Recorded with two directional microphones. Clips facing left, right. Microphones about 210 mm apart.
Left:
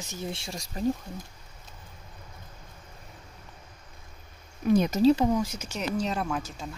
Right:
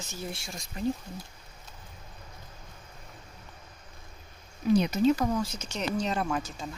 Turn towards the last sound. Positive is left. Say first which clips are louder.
# even
turn(degrees=0)  # may be behind; listen again after turning